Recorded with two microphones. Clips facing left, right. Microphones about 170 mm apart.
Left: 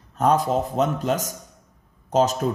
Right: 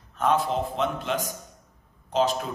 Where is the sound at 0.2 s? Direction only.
40° left (ahead or behind).